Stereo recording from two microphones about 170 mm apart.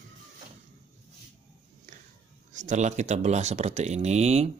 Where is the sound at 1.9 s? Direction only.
50° right (ahead or behind).